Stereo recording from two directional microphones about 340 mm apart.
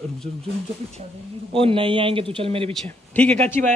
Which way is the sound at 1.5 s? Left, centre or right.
Centre.